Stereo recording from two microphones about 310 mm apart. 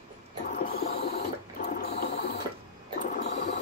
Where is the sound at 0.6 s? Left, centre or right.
Left.